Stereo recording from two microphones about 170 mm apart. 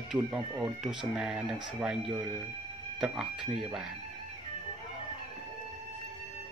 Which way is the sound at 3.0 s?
5° right (ahead or behind).